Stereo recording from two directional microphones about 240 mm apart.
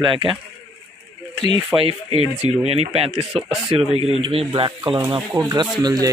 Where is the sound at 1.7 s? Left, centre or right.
Right.